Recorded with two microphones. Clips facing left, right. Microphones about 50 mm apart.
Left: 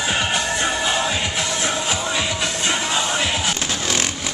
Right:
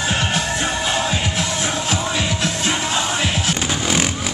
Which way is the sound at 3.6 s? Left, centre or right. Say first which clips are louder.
Right 3 dB; centre.